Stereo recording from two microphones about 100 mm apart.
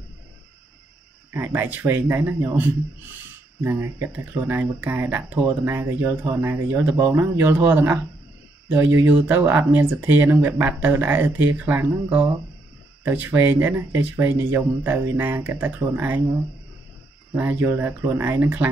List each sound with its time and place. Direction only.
1.3 s speech: 20° right (ahead or behind)
17.4 s speech: 20° right (ahead or behind)